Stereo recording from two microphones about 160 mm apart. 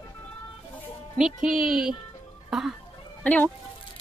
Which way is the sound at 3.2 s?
10° left (ahead or behind).